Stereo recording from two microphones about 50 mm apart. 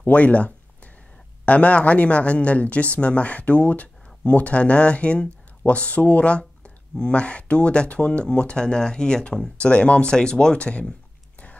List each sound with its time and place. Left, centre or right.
0.0 s speech: left